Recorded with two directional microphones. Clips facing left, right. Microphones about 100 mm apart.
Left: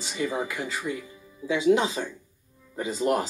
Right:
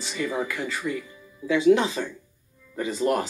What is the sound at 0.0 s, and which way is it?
Speech, 25° left (ahead or behind).